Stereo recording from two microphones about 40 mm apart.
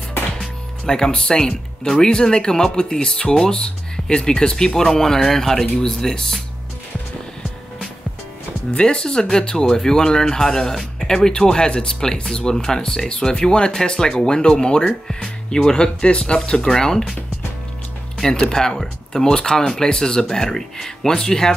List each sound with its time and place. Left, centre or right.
0.8 s speech: centre
8.7 s speech: left
18.1 s speech: centre